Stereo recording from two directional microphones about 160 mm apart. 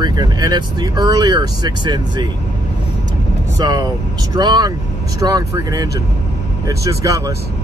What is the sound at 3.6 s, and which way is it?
Speech, 25° right (ahead or behind).